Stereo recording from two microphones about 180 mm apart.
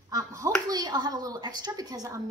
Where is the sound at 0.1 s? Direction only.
20° right (ahead or behind).